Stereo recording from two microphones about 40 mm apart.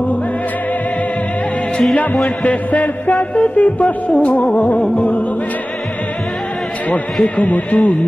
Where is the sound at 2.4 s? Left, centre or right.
Left.